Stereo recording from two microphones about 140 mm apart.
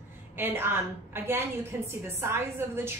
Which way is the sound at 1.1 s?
15° right (ahead or behind).